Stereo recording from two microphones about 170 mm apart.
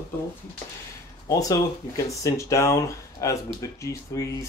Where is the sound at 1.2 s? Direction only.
20° left (ahead or behind).